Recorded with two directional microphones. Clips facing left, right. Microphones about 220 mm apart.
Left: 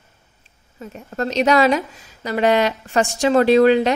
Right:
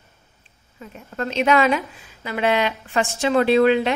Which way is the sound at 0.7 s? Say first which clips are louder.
Left 4 dB; 40° left (ahead or behind).